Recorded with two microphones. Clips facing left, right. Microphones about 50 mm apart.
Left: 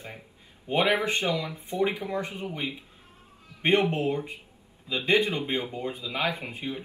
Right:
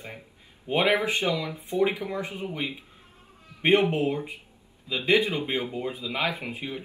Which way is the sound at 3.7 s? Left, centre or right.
Right.